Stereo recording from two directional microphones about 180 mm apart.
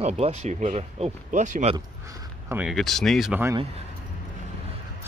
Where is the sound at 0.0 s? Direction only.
35° right (ahead or behind).